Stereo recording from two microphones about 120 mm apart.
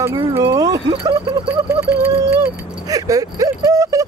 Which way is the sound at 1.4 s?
20° right (ahead or behind).